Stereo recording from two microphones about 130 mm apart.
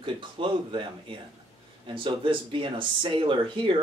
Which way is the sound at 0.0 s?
40° right (ahead or behind).